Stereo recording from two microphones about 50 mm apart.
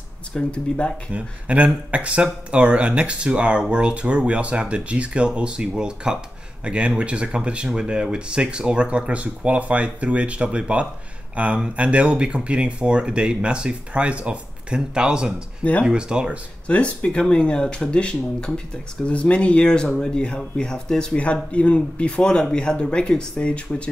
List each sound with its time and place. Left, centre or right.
0.3 s speech: left
1.1 s speech: right
16.6 s speech: left